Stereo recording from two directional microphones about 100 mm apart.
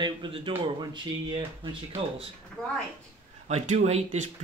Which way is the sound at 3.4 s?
90° right.